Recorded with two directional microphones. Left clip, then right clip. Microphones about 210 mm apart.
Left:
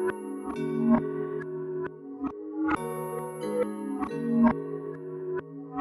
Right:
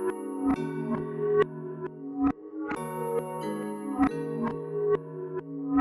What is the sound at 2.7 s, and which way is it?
Music, centre (ahead or behind).